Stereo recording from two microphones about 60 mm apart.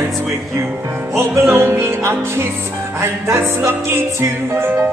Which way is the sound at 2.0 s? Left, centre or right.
Right.